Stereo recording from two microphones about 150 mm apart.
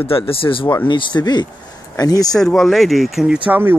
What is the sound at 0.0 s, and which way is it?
Speech, 40° left (ahead or behind).